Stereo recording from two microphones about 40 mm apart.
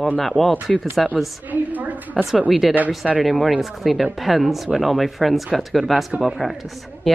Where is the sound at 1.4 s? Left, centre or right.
Right.